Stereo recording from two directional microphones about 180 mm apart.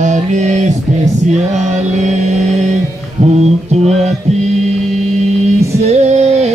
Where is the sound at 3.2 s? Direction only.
40° right (ahead or behind).